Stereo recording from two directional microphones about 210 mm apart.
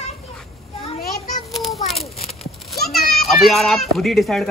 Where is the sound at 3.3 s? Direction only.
Centre (ahead or behind).